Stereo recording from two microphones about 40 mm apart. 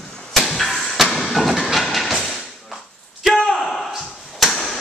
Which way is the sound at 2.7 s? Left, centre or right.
Centre.